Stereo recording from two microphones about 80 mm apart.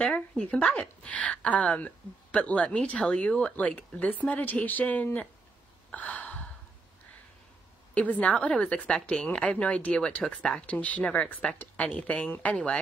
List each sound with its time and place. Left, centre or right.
0.0 s speech: centre
5.9 s gasp: centre
7.9 s speech: centre